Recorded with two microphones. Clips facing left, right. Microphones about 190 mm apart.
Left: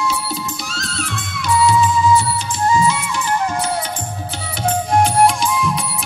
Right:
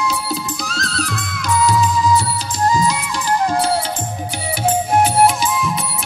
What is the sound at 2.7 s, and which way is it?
Music, 40° right (ahead or behind).